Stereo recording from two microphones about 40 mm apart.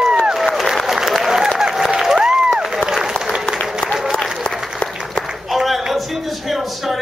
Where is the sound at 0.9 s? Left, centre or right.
Centre.